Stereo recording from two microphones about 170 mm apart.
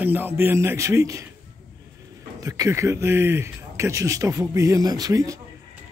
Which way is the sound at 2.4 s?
20° right (ahead or behind).